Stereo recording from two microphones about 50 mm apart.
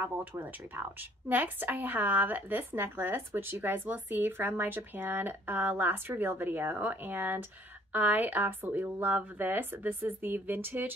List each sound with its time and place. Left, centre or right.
0.0 s speech: right